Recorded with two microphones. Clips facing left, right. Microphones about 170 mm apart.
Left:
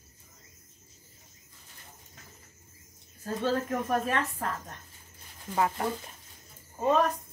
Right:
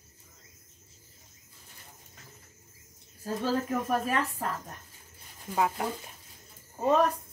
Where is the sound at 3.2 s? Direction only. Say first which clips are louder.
Even; 5° right (ahead or behind).